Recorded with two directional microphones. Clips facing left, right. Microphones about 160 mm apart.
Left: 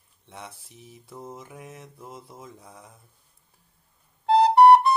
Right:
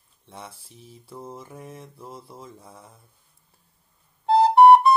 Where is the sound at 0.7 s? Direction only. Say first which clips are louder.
Right 1 dB; 20° left (ahead or behind).